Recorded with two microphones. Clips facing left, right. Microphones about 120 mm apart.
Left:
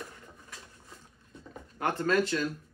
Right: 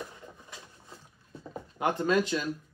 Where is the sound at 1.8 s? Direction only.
15° right (ahead or behind).